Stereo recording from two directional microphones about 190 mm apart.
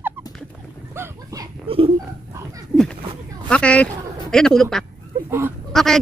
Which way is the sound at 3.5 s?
5° left (ahead or behind).